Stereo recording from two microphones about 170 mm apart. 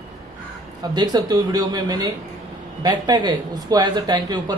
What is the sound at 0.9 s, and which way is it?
Speech, 25° right (ahead or behind).